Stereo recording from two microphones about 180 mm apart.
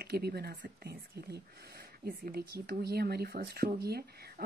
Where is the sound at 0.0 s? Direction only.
65° right (ahead or behind).